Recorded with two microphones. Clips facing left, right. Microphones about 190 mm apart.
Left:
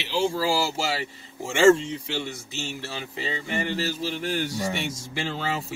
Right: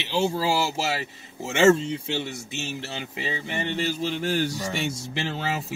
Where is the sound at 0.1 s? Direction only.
20° right (ahead or behind).